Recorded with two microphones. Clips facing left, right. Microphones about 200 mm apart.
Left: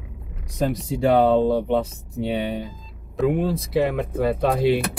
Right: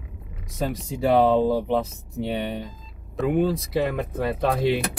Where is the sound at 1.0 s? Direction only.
Centre (ahead or behind).